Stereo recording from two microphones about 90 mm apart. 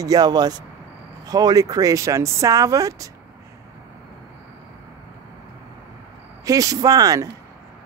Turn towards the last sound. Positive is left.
turn(degrees=-45)  # may be behind; listen again after turning